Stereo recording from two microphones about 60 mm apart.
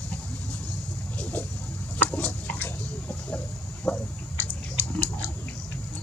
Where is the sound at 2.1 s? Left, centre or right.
Left.